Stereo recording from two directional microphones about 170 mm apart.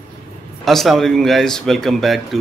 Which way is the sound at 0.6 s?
Centre (ahead or behind).